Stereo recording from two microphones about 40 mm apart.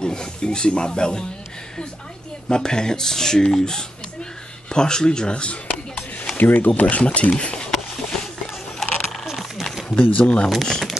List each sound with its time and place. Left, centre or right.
0.0 s speech: left
2.4 s speech: centre
6.3 s speech: left
8.0 s a sound: centre
8.7 s keys jangling: centre
9.4 s a sound: centre
9.9 s speech: left
10.2 s speech: left
10.6 s speech: centre